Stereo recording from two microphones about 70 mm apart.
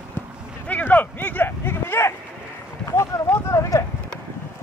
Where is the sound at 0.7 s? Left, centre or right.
Left.